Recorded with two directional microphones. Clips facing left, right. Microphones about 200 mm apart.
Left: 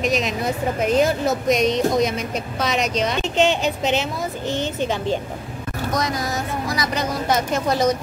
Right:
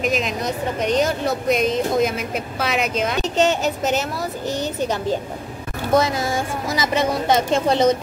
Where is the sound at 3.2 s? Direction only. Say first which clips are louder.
Right 1 dB; 45° right (ahead or behind).